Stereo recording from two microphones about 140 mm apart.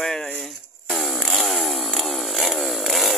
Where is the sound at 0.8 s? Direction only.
Centre (ahead or behind).